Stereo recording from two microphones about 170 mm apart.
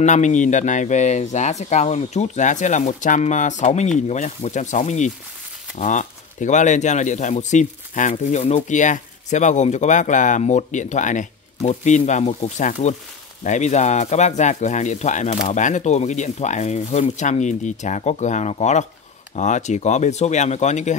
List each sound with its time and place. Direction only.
0.0 s speech: 45° left (ahead or behind)